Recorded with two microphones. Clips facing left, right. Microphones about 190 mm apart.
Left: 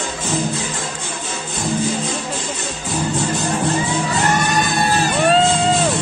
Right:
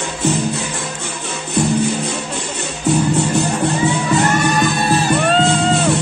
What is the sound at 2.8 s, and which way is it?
Music, 65° right (ahead or behind).